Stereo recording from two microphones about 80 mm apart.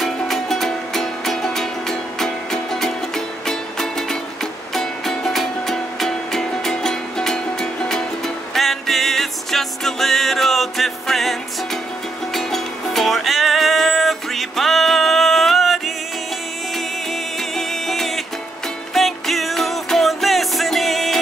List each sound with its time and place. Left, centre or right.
0.0 s music: centre